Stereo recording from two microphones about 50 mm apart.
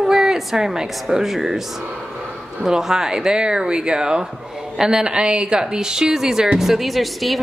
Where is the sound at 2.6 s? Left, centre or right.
Centre.